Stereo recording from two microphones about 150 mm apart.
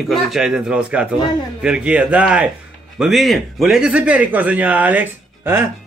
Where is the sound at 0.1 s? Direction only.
Centre (ahead or behind).